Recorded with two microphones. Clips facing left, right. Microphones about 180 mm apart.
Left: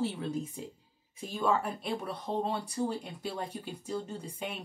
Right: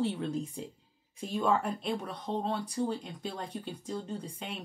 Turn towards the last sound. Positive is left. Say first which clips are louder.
# left 1 dB
turn(degrees=10)  # may be behind; listen again after turning